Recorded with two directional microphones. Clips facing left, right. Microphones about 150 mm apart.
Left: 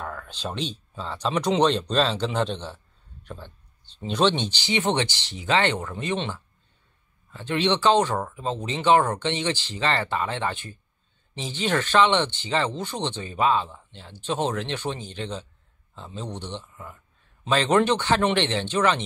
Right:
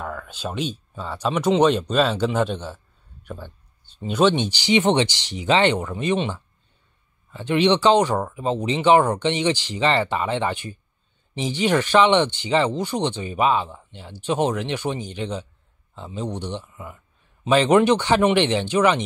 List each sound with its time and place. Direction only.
0.0 s speech: 5° right (ahead or behind)